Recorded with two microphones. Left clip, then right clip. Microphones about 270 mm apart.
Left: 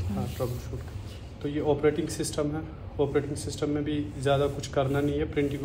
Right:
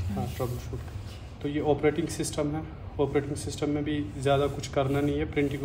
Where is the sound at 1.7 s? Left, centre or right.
Right.